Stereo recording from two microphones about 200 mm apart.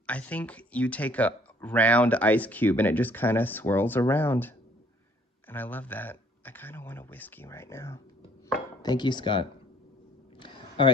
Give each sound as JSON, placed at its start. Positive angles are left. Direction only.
{"t": 0.0, "sound": "speech", "side_deg": 5}